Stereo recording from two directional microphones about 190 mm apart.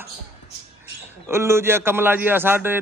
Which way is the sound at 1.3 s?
15° right (ahead or behind).